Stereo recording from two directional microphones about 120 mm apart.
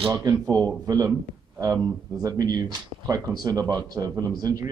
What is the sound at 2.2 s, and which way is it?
Speech, 30° right (ahead or behind).